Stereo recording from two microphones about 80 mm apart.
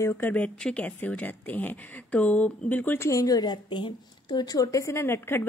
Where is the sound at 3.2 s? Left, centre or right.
Left.